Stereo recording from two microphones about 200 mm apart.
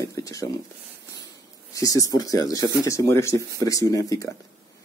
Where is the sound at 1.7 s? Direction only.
15° left (ahead or behind).